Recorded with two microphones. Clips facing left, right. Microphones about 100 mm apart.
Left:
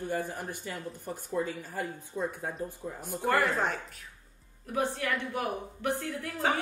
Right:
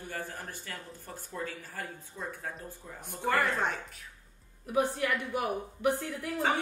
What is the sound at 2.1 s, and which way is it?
Speech, 25° left (ahead or behind).